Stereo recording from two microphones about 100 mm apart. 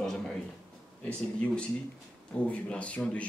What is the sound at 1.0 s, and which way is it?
A man's voice, 10° left (ahead or behind).